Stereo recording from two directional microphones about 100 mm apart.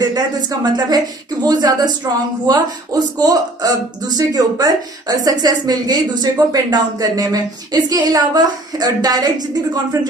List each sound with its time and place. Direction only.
0.0 s speech: 40° right (ahead or behind)